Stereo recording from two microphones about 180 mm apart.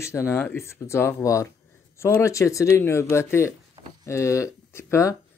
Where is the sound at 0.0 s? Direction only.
15° left (ahead or behind).